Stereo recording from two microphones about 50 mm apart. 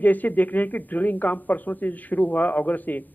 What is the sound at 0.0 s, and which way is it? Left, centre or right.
A man's voice, left.